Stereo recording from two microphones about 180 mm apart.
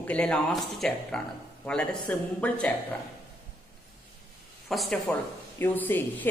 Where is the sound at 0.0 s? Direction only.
5° left (ahead or behind).